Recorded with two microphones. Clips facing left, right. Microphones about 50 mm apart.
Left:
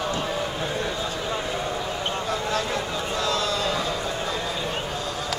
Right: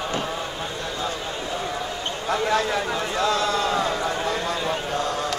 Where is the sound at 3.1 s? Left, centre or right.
Right.